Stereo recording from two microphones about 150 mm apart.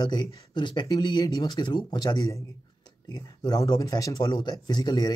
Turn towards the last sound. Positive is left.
turn(degrees=25)  # may be behind; listen again after turning